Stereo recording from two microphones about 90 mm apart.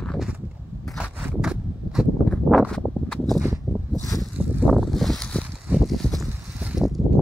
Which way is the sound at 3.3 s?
35° right (ahead or behind).